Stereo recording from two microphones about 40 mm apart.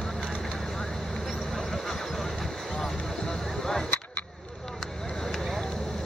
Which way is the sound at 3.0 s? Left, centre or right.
Centre.